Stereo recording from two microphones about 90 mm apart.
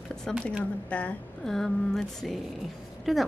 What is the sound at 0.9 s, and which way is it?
Speech, 15° left (ahead or behind).